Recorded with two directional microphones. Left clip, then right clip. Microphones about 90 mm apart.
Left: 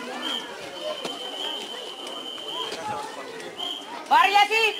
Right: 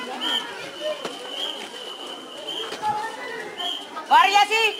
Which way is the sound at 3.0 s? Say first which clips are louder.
Right 5 dB; 25° right (ahead or behind).